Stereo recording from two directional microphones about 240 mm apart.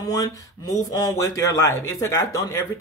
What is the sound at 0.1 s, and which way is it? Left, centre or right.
Speech, centre.